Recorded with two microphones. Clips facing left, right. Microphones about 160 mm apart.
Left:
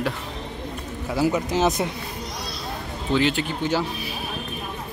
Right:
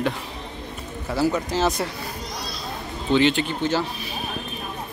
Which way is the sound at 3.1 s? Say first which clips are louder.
Right 3 dB; 5° left (ahead or behind).